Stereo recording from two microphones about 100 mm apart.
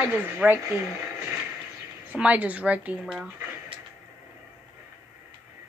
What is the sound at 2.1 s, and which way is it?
Speech, 15° right (ahead or behind).